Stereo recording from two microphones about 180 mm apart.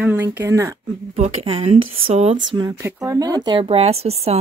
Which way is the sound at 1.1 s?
35° right (ahead or behind).